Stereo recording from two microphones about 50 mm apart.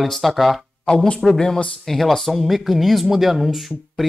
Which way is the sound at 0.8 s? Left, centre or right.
Centre.